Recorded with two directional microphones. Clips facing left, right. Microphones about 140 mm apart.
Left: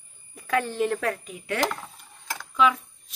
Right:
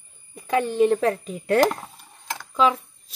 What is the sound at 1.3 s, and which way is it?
Speech, 40° right (ahead or behind).